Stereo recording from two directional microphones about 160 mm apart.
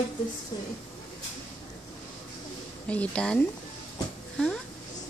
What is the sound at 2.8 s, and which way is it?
A woman's voice, 5° left (ahead or behind).